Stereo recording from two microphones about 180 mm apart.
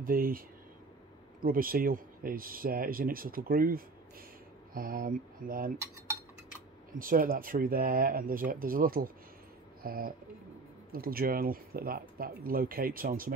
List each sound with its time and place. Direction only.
0.0 s speech: 50° right (ahead or behind)
1.4 s speech: 50° right (ahead or behind)
6.9 s speech: 50° right (ahead or behind)